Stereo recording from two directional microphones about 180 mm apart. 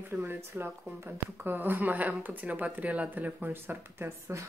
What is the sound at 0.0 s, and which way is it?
Speech, 15° right (ahead or behind).